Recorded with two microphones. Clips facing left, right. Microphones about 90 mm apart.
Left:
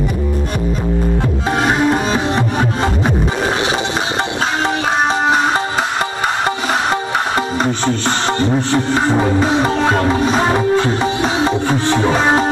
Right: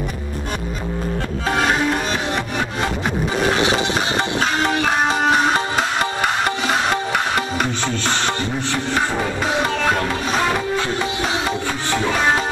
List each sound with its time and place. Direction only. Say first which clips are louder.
1.5 s music: left 4 dB; 20° left (ahead or behind)
4.6 s music: left 2 dB; 25° left (ahead or behind)